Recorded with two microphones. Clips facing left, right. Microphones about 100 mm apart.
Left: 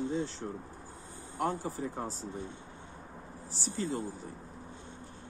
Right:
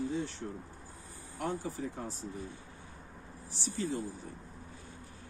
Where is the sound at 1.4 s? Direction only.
40° left (ahead or behind).